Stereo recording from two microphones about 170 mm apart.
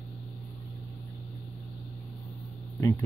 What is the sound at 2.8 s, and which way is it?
Speech, 15° left (ahead or behind).